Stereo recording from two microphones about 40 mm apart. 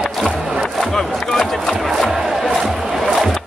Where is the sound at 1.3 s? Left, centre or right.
Centre.